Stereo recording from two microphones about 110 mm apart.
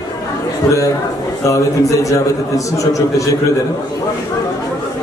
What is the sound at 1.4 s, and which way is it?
A man's voice, 30° left (ahead or behind).